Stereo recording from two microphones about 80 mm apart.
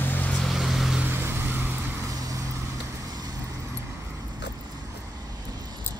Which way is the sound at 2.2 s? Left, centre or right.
Right.